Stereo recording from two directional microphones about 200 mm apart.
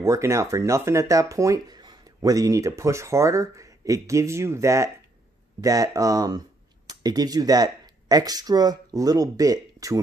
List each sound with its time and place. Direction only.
0.0 s speech: 15° right (ahead or behind)